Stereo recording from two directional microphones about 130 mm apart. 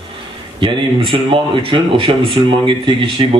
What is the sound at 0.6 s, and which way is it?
Speech, 40° right (ahead or behind).